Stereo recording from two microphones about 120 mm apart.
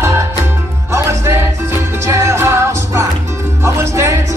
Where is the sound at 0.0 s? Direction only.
20° right (ahead or behind).